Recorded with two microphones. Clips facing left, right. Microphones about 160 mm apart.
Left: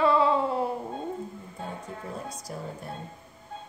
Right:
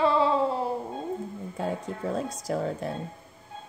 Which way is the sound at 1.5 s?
90° right.